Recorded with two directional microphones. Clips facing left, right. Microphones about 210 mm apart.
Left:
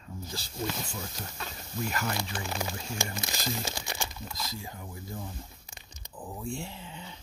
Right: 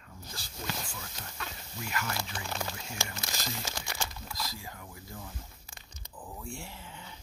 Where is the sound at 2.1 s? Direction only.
5° left (ahead or behind).